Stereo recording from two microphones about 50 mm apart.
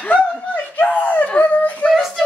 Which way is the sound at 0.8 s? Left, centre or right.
Left.